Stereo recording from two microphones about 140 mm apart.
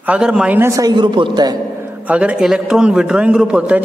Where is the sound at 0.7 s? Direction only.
30° right (ahead or behind).